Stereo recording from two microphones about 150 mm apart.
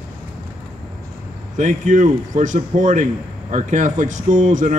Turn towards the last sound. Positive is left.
turn(degrees=-55)  # may be behind; listen again after turning